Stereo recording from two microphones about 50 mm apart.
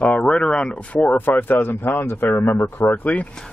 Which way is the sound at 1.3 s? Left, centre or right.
Left.